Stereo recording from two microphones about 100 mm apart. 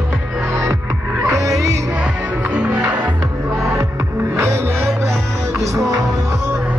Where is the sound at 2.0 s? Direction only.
10° right (ahead or behind).